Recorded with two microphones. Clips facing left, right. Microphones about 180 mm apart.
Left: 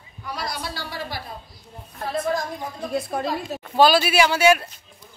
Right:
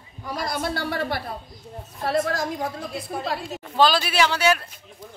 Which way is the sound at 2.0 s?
85° right.